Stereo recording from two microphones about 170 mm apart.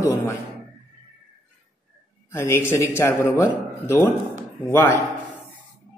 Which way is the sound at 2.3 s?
15° left (ahead or behind).